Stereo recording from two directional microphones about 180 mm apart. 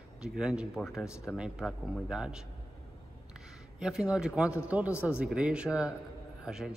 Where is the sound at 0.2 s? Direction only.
5° right (ahead or behind).